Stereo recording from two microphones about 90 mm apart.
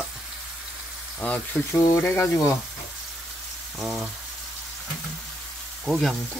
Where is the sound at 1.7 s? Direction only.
35° left (ahead or behind).